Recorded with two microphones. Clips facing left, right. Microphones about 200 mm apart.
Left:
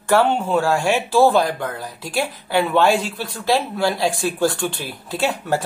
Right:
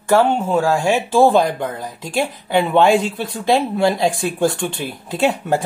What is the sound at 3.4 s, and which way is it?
Speech, 20° right (ahead or behind).